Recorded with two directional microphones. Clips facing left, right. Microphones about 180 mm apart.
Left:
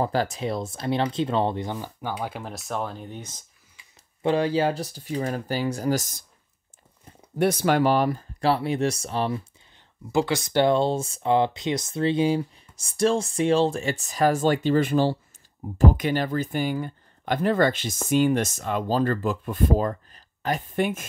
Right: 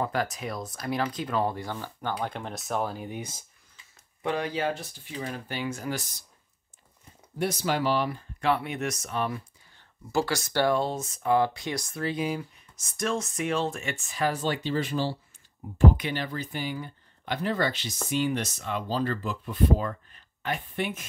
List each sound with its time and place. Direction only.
0.0 s speech: 30° left (ahead or behind)
2.0 s speech: 10° left (ahead or behind); by 3.4 s 10° right (ahead or behind)
4.2 s speech: 30° left (ahead or behind)
7.3 s speech: 55° left (ahead or behind)